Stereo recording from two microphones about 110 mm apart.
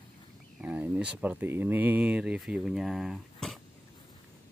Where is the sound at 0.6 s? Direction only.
10° right (ahead or behind).